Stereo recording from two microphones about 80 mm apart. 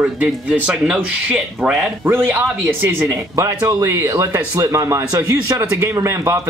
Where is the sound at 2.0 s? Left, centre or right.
Right.